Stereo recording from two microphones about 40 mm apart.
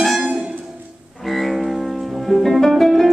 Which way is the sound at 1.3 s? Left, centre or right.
Centre.